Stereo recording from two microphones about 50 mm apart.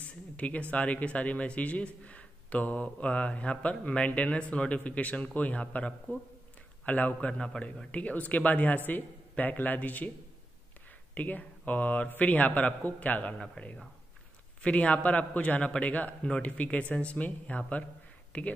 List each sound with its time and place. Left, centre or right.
0.0 s a man's voice: left
11.1 s a man's voice: left